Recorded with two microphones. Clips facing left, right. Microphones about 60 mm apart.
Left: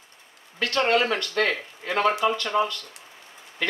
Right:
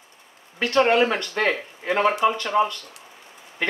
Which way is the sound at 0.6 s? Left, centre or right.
Right.